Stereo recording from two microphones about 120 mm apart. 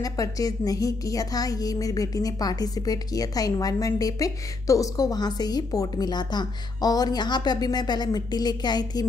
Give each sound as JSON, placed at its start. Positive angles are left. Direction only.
{"t": 0.0, "sound": "a woman's voice", "side_deg": 30}